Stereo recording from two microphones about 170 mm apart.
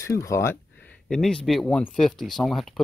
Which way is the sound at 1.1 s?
5° left (ahead or behind).